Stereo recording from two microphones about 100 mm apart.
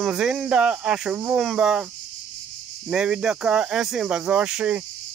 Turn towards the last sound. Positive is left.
turn(degrees=-10)  # may be behind; listen again after turning